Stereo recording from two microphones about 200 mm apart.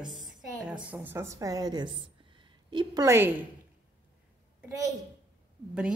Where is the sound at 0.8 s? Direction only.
10° right (ahead or behind).